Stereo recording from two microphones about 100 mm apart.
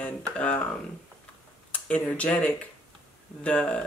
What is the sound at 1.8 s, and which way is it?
Speech, 15° left (ahead or behind).